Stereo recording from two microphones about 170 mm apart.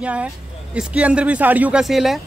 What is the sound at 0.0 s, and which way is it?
Speech, 5° right (ahead or behind).